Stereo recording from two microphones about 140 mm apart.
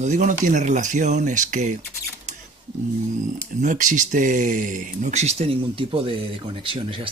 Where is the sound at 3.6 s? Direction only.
65° right (ahead or behind); by 7.1 s 40° right (ahead or behind).